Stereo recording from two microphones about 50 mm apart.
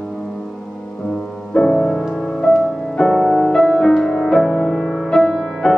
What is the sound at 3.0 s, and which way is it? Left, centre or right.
Music, centre.